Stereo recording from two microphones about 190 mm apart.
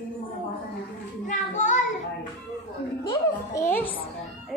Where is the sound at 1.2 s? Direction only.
40° left (ahead or behind).